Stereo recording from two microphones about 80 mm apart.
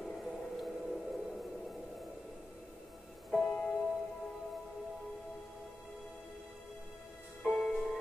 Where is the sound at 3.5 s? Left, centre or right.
Centre.